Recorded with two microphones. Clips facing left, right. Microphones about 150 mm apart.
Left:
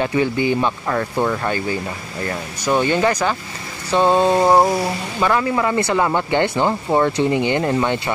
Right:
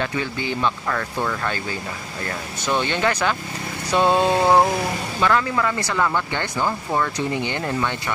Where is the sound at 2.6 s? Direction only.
10° left (ahead or behind).